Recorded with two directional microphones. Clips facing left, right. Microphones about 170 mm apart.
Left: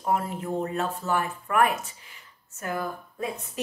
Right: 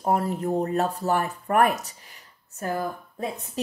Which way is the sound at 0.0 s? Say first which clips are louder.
Right 3 dB; 40° right (ahead or behind).